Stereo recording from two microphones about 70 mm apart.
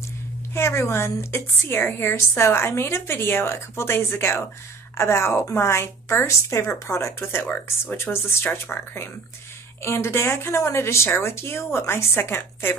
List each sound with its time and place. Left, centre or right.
0.6 s a woman's voice: left